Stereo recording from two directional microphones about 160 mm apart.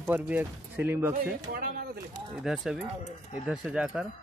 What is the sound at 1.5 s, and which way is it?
Speech, 65° right (ahead or behind).